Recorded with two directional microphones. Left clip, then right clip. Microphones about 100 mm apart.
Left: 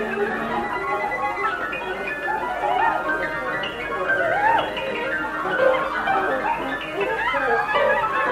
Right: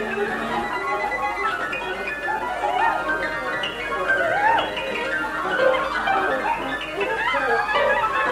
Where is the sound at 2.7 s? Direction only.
35° left (ahead or behind).